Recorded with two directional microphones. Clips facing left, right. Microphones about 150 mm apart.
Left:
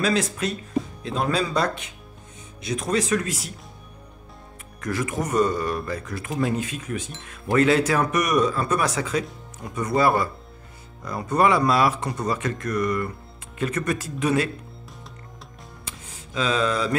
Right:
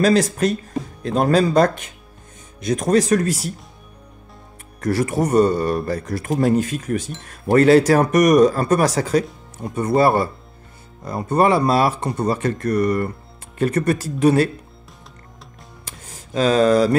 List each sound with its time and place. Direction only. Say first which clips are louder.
0.0 s speech: right 7 dB; 40° right (ahead or behind)
4.7 s speech: right 7 dB; 35° right (ahead or behind)
9.6 s speech: right 5 dB; 30° right (ahead or behind)
15.8 s music: right 3 dB; 45° right (ahead or behind)